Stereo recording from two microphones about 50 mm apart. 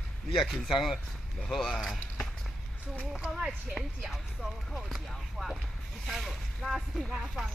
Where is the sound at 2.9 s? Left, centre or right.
Right; by 7.5 s centre.